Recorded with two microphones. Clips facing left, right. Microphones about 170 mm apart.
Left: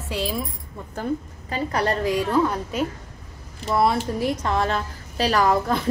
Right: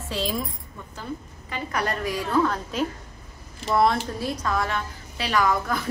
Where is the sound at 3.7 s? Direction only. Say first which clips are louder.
Even; 5° left (ahead or behind).